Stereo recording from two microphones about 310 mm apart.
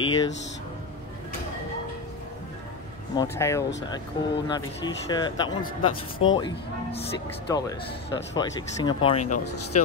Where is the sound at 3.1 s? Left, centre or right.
Centre.